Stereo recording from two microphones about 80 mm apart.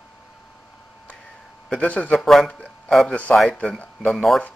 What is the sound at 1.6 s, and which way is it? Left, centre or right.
Speech, centre.